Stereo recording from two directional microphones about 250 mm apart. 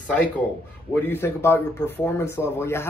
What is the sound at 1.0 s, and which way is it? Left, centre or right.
Speech, centre.